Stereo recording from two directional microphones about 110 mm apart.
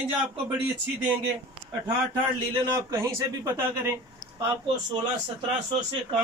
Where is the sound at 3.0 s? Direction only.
30° right (ahead or behind).